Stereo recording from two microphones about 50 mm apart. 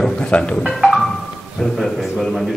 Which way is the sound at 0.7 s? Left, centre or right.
Centre.